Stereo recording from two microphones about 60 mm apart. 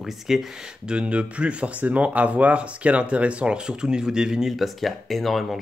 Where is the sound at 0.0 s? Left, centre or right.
Centre.